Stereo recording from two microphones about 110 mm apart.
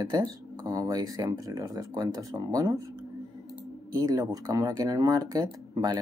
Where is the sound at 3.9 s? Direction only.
30° right (ahead or behind).